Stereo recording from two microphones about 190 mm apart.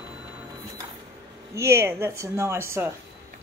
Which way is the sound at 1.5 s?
15° right (ahead or behind).